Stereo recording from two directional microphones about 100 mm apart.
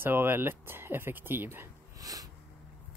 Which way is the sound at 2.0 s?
35° right (ahead or behind).